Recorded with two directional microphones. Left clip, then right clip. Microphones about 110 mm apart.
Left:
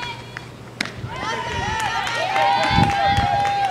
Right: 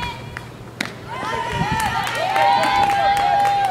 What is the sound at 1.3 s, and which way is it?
Run, 20° right (ahead or behind).